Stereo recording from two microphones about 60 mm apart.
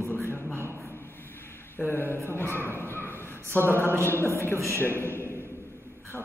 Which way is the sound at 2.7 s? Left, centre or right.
Left.